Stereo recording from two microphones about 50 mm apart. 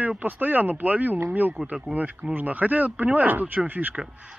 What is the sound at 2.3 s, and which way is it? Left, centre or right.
Speech, right.